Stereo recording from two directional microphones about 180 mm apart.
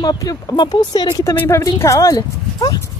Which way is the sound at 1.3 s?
10° left (ahead or behind).